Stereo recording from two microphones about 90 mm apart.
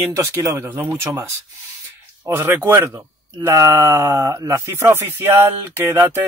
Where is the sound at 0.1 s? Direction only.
35° right (ahead or behind).